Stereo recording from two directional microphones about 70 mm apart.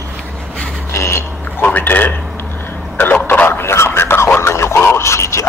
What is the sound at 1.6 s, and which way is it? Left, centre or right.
Speech, left.